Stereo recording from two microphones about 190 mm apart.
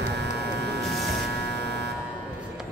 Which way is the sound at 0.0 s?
60° right (ahead or behind).